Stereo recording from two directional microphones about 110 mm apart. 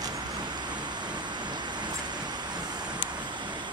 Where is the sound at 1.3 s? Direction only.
40° right (ahead or behind).